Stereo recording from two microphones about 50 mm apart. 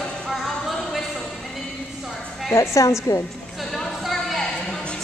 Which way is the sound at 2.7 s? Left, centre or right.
Left.